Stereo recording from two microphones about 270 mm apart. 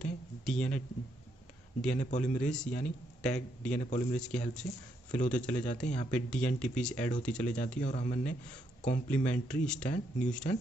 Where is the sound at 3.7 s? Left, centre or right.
Left.